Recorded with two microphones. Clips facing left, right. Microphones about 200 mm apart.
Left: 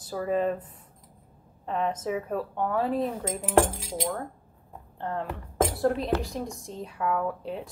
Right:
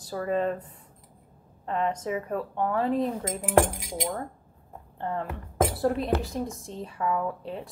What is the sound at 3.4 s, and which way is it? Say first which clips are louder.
Speech: even; 15° right (ahead or behind).